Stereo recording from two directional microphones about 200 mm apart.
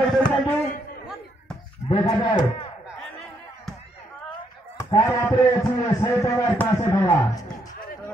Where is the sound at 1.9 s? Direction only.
20° left (ahead or behind).